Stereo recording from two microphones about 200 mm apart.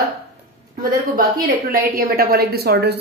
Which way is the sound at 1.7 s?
45° right (ahead or behind).